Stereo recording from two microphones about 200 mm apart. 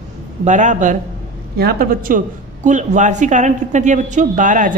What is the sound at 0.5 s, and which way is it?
Speech, 35° right (ahead or behind).